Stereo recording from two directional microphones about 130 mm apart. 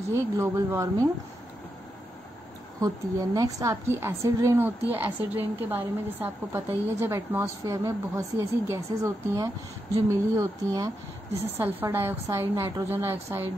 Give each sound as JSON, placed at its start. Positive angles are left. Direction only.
{"t": 0.1, "sound": "a woman's voice", "side_deg": -20}
{"t": 2.8, "sound": "a woman's voice", "side_deg": -25}